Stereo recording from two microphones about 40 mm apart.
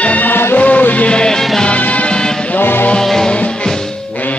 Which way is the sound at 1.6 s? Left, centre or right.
Left.